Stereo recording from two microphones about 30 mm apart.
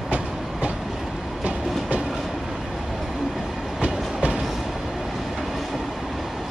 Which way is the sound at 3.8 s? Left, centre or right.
Right.